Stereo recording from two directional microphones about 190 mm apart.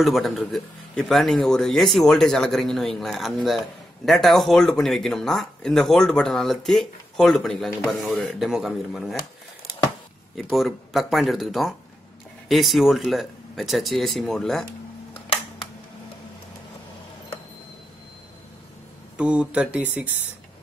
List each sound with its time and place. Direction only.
0.0 s a man's voice: centre (ahead or behind)
10.5 s a man's voice: centre (ahead or behind)
19.1 s a man's voice: 5° right (ahead or behind)